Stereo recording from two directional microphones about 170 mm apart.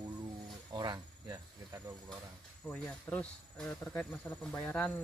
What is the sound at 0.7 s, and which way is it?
Cricket, 25° right (ahead or behind).